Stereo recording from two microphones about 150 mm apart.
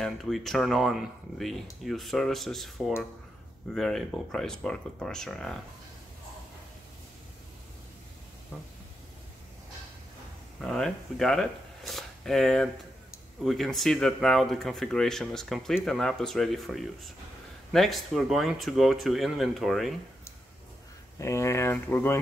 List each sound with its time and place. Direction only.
0.0 s speech: centre (ahead or behind)
3.7 s speech: centre (ahead or behind)
10.6 s speech: centre (ahead or behind)
21.2 s speech: 20° left (ahead or behind)